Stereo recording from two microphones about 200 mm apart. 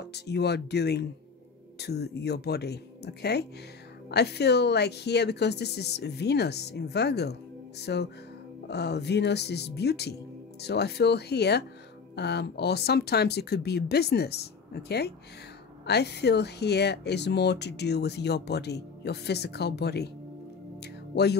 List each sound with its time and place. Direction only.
0.0 s speech: 55° left (ahead or behind)
20.8 s music: 55° left (ahead or behind)